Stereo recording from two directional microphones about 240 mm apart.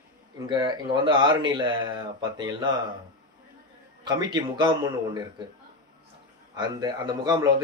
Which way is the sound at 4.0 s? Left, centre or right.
Centre.